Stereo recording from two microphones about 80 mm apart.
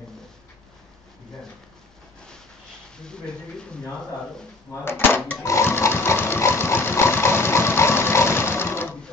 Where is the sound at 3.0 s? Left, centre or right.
Centre.